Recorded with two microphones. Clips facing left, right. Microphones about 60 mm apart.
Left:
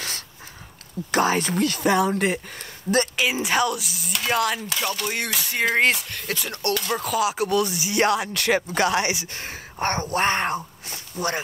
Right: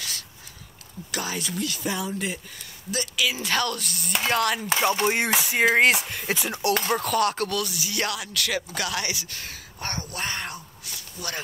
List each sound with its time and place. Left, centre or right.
1.1 s speech: left
3.3 s a woman's voice: centre
4.6 s speech: right
5.4 s speech: centre
7.0 s speech: centre
7.4 s speech: left